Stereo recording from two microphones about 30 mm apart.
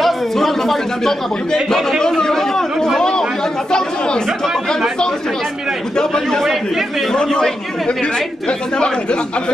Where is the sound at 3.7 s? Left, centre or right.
Left.